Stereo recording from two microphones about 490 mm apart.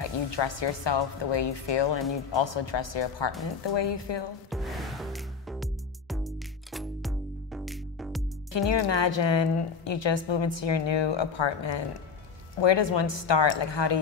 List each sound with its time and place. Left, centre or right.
0.0 s a woman's voice: left
4.5 s music: centre
8.5 s a woman's voice: left